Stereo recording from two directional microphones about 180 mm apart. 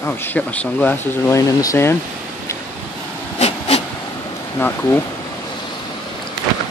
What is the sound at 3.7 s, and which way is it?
Vehicle, 35° left (ahead or behind).